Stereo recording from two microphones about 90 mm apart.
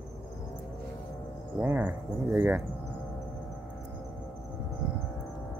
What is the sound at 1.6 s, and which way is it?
Cricket, 20° right (ahead or behind).